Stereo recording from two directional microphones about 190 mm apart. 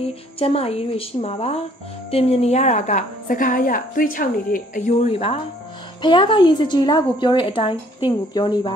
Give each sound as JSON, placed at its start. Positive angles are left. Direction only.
{"t": 0.4, "sound": "a woman's voice", "side_deg": 30}